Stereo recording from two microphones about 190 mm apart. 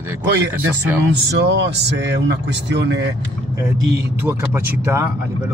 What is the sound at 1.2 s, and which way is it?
Speech, 65° right (ahead or behind).